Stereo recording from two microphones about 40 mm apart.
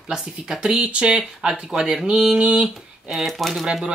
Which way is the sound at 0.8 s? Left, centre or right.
Right.